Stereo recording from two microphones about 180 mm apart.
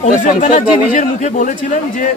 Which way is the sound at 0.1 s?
45° left (ahead or behind).